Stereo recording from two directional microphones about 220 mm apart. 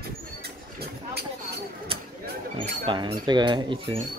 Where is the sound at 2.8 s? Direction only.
20° right (ahead or behind).